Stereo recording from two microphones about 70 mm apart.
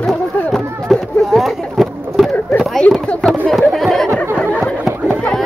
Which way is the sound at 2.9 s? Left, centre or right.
Left.